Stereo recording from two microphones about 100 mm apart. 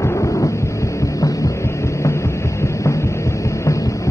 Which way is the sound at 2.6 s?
30° left (ahead or behind).